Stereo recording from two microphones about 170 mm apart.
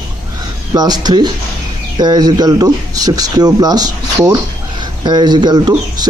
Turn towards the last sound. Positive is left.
turn(degrees=-25)  # may be behind; listen again after turning